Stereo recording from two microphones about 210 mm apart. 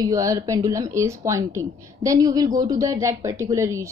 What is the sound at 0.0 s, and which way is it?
A woman's voice, 15° right (ahead or behind).